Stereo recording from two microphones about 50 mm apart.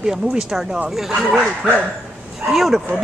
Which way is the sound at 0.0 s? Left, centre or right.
Centre.